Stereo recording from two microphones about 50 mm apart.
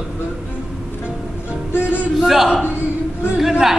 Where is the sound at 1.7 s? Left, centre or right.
Left.